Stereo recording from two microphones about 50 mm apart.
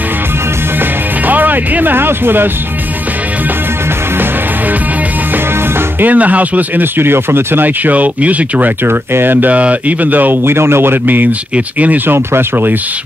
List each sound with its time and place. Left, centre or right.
1.2 s speech: right
5.9 s speech: right
8.8 s speech: right
9.5 s speech: right
10.4 s speech: right
11.5 s speech: right
12.1 s speech: right